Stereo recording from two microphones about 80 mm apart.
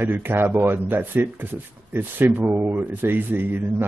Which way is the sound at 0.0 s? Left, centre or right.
Right.